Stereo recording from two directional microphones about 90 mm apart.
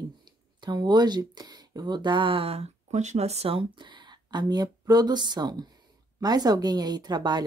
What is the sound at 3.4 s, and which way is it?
Speech, 70° right (ahead or behind).